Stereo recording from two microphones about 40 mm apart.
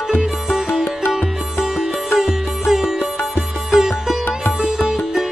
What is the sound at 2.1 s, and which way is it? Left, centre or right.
Music, centre.